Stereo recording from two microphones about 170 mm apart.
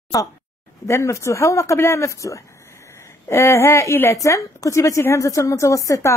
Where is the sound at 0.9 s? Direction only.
15° left (ahead or behind).